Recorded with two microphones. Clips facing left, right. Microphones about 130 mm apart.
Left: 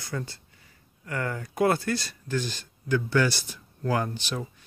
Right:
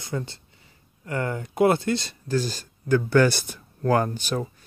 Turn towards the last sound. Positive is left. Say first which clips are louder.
# right 5 dB
turn(degrees=-45)  # may be behind; listen again after turning